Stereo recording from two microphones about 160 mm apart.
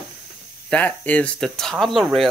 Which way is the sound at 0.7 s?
10° left (ahead or behind).